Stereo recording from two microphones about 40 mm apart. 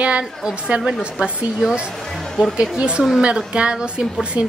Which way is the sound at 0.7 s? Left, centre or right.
Right.